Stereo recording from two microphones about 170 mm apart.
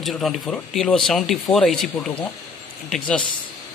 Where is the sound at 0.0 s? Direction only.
Centre (ahead or behind).